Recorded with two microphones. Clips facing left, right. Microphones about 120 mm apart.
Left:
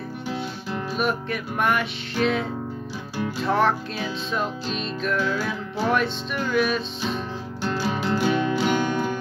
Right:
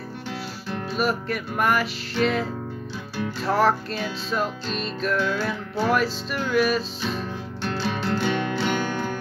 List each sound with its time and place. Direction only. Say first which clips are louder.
0.9 s music: right 1 dB; centre (ahead or behind)
3.4 s music: right 1 dB; centre (ahead or behind)
7.6 s music: left 2 dB; 10° left (ahead or behind)